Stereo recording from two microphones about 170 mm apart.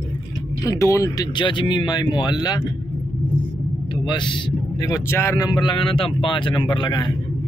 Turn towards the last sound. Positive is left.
turn(degrees=25)  # may be behind; listen again after turning